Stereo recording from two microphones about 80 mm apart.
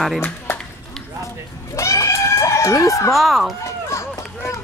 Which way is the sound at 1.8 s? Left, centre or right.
Left.